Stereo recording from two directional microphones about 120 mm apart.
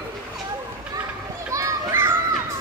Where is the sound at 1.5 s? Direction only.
25° right (ahead or behind).